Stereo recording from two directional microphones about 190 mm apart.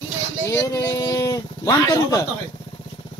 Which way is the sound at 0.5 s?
15° left (ahead or behind).